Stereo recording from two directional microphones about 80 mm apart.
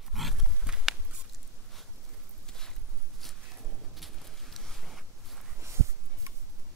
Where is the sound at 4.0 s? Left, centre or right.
Centre.